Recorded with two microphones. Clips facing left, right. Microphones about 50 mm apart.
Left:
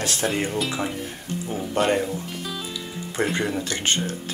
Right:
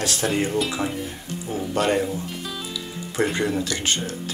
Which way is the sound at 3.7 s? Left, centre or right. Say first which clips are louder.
Even; left.